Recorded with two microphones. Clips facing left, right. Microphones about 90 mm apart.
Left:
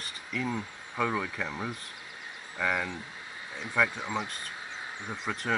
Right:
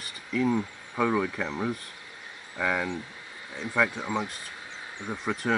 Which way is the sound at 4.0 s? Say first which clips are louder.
Right 3 dB; 20° right (ahead or behind).